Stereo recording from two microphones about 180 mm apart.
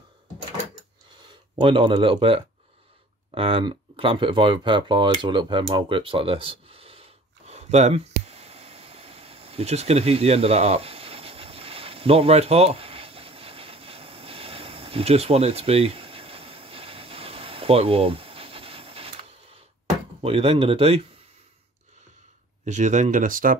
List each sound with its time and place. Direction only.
1.6 s speech: 30° right (ahead or behind)
5.2 s a sound: 25° right (ahead or behind)
20.2 s speech: 35° right (ahead or behind)
22.7 s speech: 40° right (ahead or behind)